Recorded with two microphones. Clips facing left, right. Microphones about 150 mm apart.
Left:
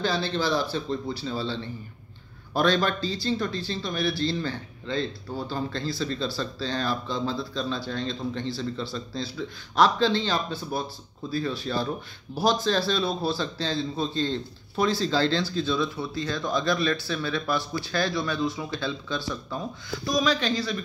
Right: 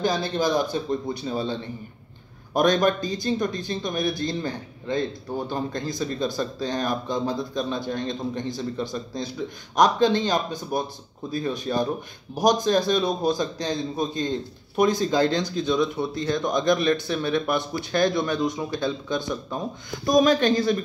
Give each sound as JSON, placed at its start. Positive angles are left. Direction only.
{"t": 0.0, "sound": "speech", "side_deg": -15}
{"t": 20.1, "sound": "speech", "side_deg": -50}